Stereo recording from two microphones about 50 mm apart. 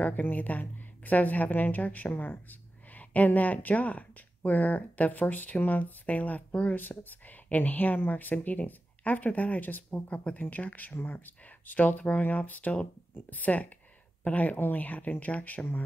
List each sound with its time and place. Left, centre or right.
0.0 s speech: left